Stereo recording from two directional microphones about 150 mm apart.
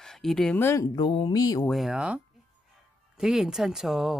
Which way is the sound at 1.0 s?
35° left (ahead or behind).